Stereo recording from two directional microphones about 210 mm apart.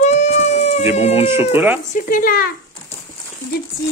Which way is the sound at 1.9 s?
40° left (ahead or behind).